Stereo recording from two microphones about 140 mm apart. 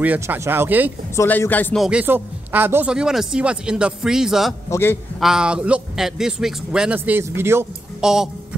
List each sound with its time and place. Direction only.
0.0 s speech: 10° right (ahead or behind)
1.1 s speech: 15° left (ahead or behind)
1.8 s speech: 10° right (ahead or behind)
4.6 s a man's voice: 20° left (ahead or behind)
5.2 s speech: 5° right (ahead or behind)
8.0 s speech: 5° right (ahead or behind)